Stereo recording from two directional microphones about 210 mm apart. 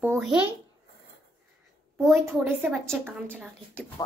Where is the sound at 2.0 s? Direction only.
Centre (ahead or behind).